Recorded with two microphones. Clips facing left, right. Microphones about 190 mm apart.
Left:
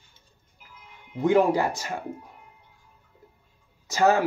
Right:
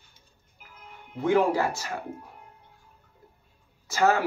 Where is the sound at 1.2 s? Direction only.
15° left (ahead or behind).